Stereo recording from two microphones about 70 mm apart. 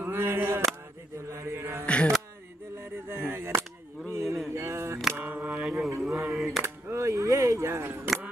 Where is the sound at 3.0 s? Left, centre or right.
Right.